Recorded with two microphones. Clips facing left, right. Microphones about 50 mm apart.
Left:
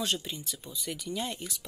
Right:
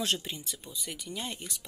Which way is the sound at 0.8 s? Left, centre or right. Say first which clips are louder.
Left 4 dB; centre.